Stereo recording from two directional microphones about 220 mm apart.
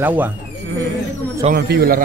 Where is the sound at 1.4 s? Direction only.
45° right (ahead or behind).